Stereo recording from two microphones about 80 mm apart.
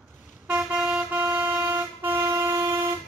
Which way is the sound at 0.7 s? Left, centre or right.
Centre.